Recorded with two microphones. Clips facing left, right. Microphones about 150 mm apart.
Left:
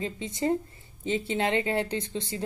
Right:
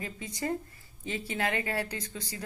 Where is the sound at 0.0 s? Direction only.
25° left (ahead or behind).